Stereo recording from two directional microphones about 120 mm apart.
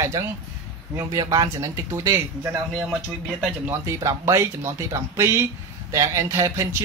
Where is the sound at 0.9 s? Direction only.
30° right (ahead or behind).